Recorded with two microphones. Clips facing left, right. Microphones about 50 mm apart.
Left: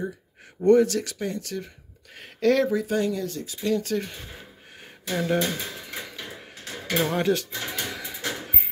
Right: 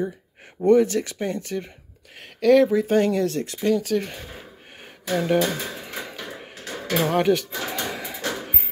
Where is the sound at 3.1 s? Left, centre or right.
Right.